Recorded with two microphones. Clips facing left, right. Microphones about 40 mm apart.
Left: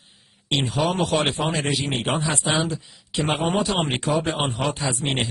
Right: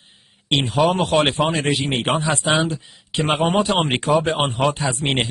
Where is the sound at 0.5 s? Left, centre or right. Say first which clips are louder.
Right 5 dB; right.